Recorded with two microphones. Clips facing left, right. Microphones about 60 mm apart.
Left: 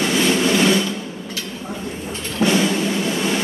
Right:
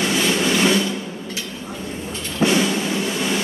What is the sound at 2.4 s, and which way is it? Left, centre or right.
Music, centre.